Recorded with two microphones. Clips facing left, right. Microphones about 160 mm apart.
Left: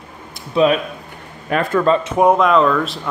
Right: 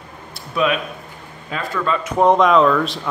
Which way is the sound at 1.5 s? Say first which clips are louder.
Left 8 dB; 60° left (ahead or behind).